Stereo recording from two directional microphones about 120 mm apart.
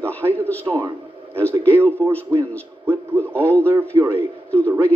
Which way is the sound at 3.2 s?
15° left (ahead or behind).